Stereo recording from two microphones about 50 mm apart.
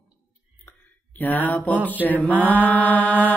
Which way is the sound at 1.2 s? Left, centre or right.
Left.